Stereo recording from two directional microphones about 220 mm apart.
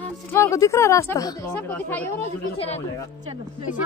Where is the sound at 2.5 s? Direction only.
30° left (ahead or behind).